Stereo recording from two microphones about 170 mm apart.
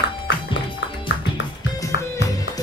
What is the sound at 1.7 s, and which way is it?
Music, 20° left (ahead or behind).